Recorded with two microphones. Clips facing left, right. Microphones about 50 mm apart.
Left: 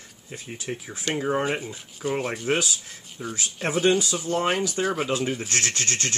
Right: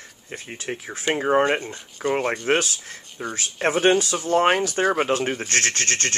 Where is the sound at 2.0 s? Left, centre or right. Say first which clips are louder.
Right 4 dB; right.